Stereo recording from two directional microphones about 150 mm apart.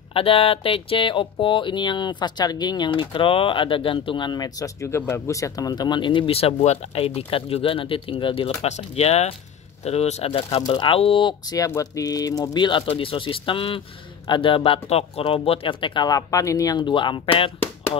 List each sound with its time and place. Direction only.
0.1 s speech: 40° left (ahead or behind)
8.6 s speech: 45° left (ahead or behind)
11.6 s speech: 20° left (ahead or behind)